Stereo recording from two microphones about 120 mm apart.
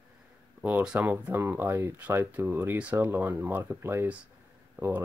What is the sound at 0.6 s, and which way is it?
Speech, 15° right (ahead or behind).